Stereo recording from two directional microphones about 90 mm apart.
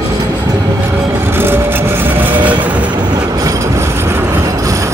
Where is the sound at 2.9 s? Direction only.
55° right (ahead or behind).